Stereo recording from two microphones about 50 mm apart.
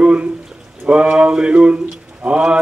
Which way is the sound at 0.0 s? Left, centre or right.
Right.